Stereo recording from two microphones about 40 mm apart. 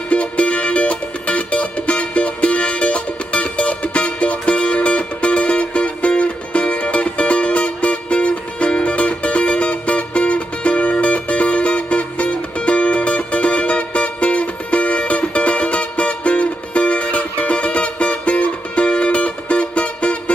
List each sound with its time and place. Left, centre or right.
0.1 s music: left